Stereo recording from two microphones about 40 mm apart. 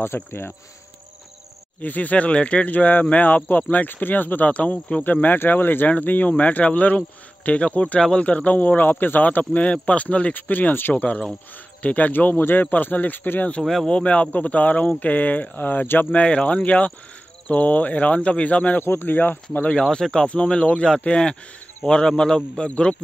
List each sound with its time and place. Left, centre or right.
0.0 s insect: left
1.8 s speech: left
4.5 s speech: left
5.0 s speech: left
10.3 s speech: left
11.0 s speech: left
12.1 s speech: left
12.7 s speech: left
13.8 s speech: left
16.2 s speech: left
18.8 s speech: left
19.7 s speech: centre